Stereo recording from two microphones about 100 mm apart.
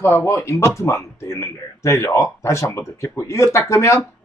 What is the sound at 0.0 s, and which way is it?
Speech, 25° left (ahead or behind).